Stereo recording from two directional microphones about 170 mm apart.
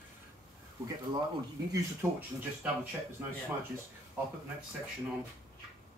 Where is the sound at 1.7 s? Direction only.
15° right (ahead or behind).